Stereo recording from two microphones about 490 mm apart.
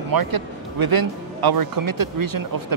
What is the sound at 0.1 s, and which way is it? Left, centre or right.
Speech, right.